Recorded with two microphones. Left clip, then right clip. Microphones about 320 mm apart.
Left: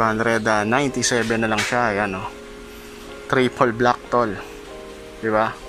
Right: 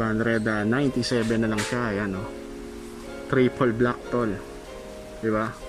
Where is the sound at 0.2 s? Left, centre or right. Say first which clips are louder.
Left 6 dB; left.